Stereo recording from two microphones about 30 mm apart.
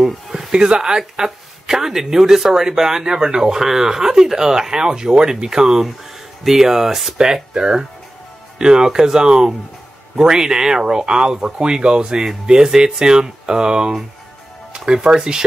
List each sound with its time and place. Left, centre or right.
0.5 s speech: right